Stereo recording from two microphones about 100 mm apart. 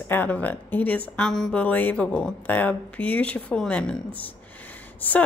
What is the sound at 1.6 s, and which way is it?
A woman's voice, 15° left (ahead or behind).